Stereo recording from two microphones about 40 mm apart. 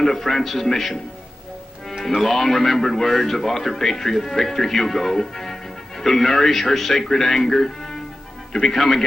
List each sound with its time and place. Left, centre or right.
0.0 s speech: centre
2.0 s a man's voice: centre